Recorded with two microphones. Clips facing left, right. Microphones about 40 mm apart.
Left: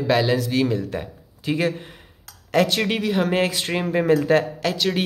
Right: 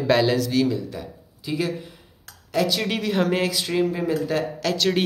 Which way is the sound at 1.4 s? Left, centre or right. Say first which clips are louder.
Left 3 dB; left.